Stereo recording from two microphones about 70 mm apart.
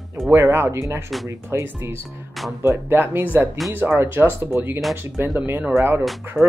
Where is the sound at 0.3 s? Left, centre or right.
Right.